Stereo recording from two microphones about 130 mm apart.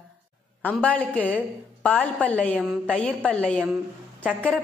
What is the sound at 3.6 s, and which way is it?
Speech, 15° right (ahead or behind).